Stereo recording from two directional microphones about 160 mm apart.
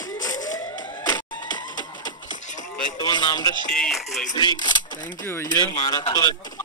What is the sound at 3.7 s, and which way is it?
Speech, centre (ahead or behind).